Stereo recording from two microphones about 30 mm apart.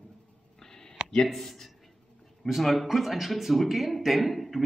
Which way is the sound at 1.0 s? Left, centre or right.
Right.